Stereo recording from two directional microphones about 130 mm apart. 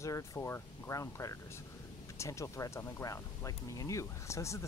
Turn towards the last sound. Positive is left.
turn(degrees=20)  # may be behind; listen again after turning